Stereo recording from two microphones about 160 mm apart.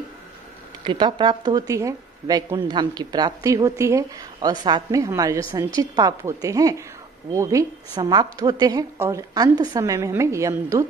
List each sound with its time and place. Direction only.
0.8 s a woman's voice: 30° right (ahead or behind)